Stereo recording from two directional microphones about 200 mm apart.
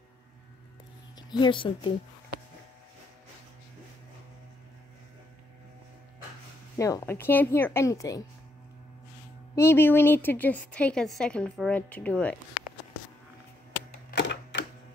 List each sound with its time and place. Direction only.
1.3 s speech: 25° left (ahead or behind)
6.8 s a woman's voice: 15° left (ahead or behind)
9.6 s a woman's voice: 10° left (ahead or behind)
14.1 s typewriter: 60° left (ahead or behind)